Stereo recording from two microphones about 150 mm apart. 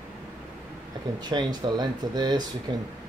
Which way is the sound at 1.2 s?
30° right (ahead or behind).